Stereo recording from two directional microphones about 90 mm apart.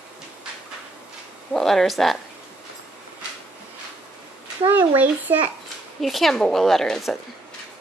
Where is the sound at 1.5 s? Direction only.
5° left (ahead or behind).